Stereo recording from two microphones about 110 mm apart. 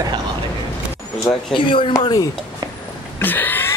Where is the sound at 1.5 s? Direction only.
50° left (ahead or behind).